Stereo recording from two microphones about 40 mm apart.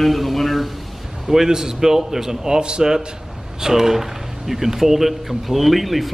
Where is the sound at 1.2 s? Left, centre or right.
Centre.